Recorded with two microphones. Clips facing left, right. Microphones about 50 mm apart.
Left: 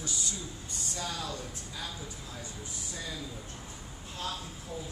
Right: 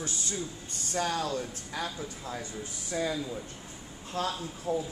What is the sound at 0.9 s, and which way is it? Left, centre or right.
Speech, right.